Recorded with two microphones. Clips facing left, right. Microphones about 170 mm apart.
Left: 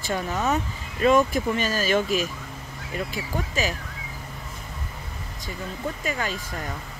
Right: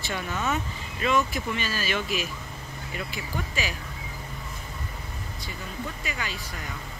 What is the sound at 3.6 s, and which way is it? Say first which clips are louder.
Speech: left 6 dB; 40° left (ahead or behind).